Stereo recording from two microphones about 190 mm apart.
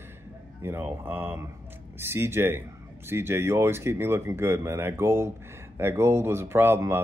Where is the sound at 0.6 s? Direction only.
10° right (ahead or behind).